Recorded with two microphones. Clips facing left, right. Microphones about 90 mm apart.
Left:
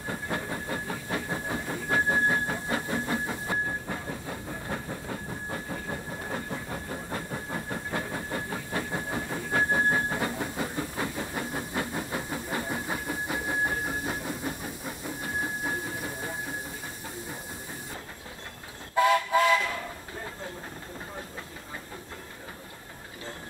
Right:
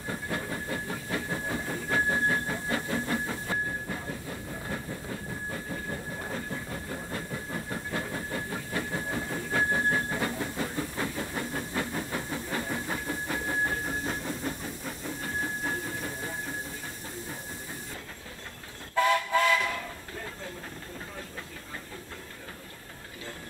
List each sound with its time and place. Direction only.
0.1 s train: 20° left (ahead or behind)
18.9 s train: 15° left (ahead or behind)